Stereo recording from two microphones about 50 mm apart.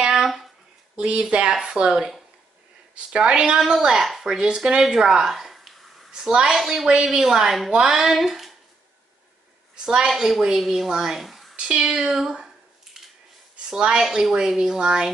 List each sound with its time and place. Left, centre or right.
0.1 s a sound: centre
0.9 s a woman's voice: right; by 8.5 s centre
9.8 s a woman's voice: centre
11.5 s a woman's voice: centre
13.7 s a woman's voice: centre
14.0 s a woman's voice: centre